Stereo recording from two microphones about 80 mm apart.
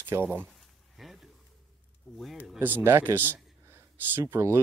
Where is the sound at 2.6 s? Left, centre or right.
Right.